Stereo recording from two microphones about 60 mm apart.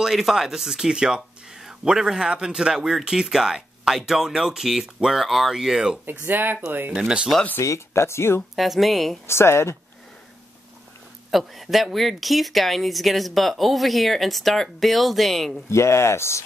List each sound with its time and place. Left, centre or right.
0.0 s speech: centre
6.2 s speech: right
7.0 s speech: centre
7.6 s speech: left
8.5 s speech: centre
9.3 s speech: left
11.2 s speech: centre
15.7 s speech: left